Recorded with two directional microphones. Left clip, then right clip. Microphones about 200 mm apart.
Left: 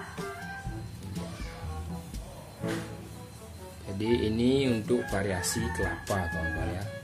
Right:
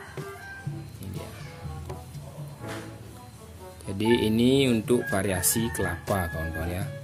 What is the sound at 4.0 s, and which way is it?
Speech, 35° right (ahead or behind).